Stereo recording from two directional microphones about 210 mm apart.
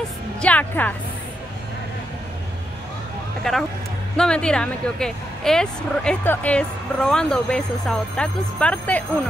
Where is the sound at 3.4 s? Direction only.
5° left (ahead or behind).